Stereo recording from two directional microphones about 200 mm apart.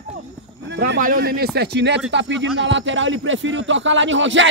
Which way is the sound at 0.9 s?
45° right (ahead or behind).